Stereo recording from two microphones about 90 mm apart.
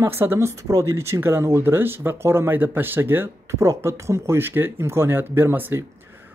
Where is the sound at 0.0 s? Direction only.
25° right (ahead or behind).